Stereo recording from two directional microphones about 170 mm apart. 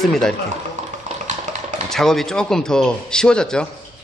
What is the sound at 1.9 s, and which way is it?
A man's voice, centre (ahead or behind).